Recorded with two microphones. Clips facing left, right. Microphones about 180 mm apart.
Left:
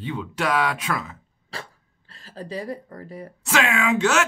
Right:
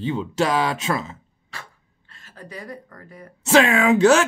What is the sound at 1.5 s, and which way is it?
Dog, 35° left (ahead or behind).